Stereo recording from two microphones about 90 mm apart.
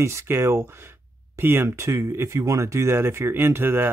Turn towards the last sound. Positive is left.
turn(degrees=-25)  # may be behind; listen again after turning